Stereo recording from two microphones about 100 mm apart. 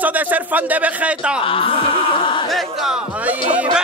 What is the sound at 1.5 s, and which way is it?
Music, 65° left (ahead or behind).